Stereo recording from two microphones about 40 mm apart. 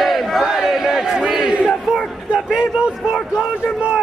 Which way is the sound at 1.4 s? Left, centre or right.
Centre.